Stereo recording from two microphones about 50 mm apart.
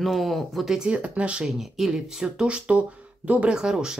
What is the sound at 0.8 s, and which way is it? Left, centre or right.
Speech, right.